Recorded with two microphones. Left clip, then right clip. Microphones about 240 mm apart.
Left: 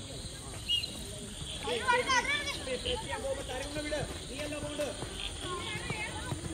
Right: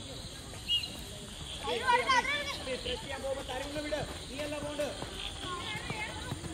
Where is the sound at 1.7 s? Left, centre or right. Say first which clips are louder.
Right 1 dB; right.